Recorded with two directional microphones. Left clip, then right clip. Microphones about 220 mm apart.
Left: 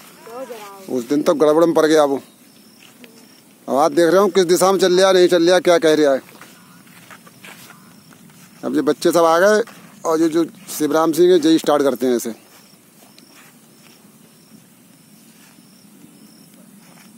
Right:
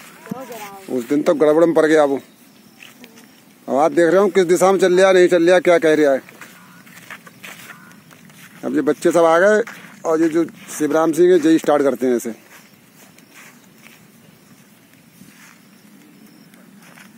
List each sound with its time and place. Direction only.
0.4 s speech: 45° right (ahead or behind)
0.8 s speech: centre (ahead or behind)
3.6 s speech: centre (ahead or behind)
7.1 s a sound: 20° right (ahead or behind)
8.5 s speech: centre (ahead or behind)